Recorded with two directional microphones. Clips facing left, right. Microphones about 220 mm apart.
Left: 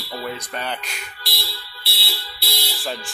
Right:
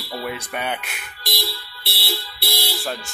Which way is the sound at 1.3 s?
50° right (ahead or behind).